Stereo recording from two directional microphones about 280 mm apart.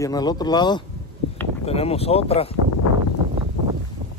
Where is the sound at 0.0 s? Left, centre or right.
Centre.